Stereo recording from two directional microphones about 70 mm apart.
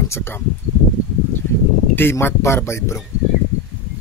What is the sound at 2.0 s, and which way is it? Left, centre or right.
Speech, left.